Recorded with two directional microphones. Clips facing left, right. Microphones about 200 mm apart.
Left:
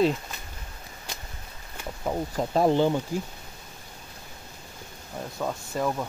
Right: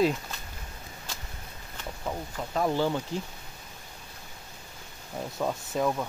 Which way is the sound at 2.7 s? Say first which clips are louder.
Left 5 dB; 20° left (ahead or behind).